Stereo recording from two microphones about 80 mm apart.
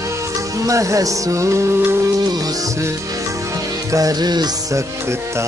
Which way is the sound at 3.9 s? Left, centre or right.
Right.